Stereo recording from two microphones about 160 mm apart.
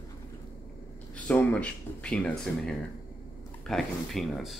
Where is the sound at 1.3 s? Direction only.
10° left (ahead or behind).